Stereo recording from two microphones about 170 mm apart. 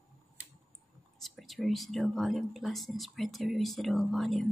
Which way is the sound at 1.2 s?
Centre (ahead or behind).